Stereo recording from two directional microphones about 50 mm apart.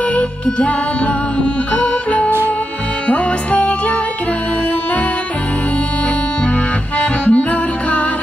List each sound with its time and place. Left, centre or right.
0.1 s music: left
7.0 s music: left